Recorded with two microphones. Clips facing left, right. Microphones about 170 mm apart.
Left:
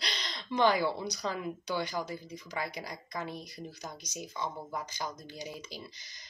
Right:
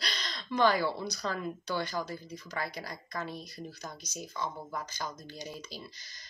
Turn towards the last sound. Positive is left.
turn(degrees=20)  # may be behind; listen again after turning